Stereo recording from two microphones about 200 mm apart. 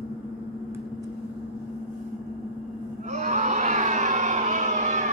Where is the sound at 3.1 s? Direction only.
35° right (ahead or behind).